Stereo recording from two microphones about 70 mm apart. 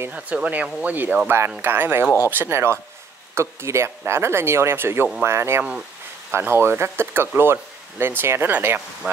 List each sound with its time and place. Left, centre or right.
0.1 s speech: centre; by 5.6 s right
5.6 s speech: centre
6.3 s speech: right; by 9.2 s centre